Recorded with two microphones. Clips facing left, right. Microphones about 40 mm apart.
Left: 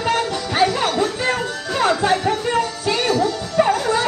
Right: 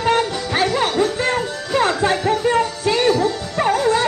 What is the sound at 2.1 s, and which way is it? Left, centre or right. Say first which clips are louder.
Music: right 1 dB; centre.